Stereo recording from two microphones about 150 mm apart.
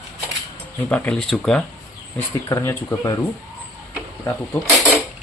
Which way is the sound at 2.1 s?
15° left (ahead or behind).